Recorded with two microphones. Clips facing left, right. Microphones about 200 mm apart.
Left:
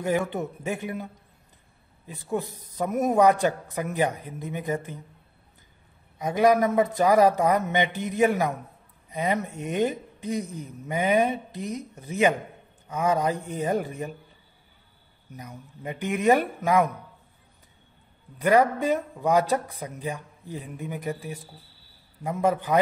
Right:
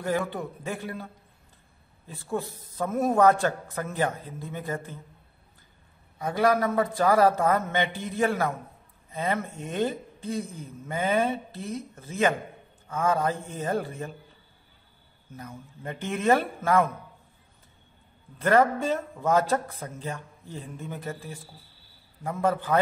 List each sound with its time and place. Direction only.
0.0 s a man's voice: 20° left (ahead or behind)
6.1 s a man's voice: 20° left (ahead or behind)
15.3 s a man's voice: 15° left (ahead or behind)
18.4 s a man's voice: 15° left (ahead or behind)